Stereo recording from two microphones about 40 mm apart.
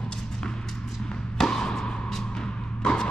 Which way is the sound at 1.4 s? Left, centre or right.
Centre.